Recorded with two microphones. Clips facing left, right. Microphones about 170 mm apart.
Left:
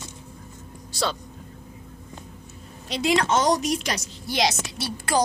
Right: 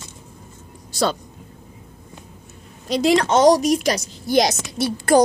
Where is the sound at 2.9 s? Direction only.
40° right (ahead or behind).